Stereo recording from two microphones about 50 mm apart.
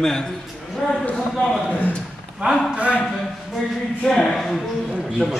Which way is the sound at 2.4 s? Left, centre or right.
Right.